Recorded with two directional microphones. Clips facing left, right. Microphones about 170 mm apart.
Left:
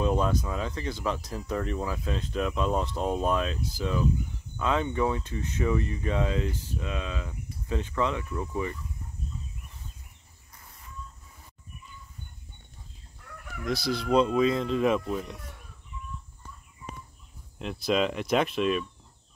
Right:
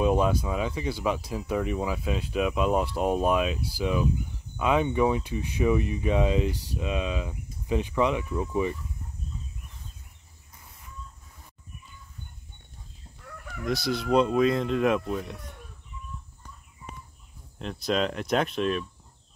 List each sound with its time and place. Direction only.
0.0 s speech: 10° right (ahead or behind)
13.7 s speech: centre (ahead or behind)
17.6 s speech: centre (ahead or behind)